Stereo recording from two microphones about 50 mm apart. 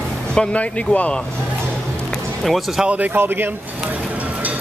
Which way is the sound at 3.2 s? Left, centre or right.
Right.